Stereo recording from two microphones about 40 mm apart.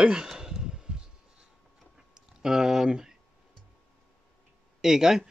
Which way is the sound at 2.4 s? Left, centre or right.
Centre.